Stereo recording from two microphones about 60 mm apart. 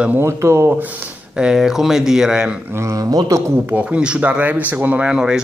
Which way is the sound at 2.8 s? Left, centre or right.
Right.